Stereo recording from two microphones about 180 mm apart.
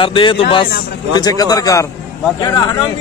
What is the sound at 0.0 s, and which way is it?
Speech, 25° left (ahead or behind).